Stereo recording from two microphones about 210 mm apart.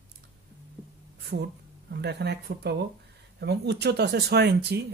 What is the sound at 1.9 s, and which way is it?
Speech, 55° right (ahead or behind).